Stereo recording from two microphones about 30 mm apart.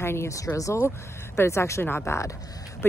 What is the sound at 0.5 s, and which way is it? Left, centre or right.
Speech, left.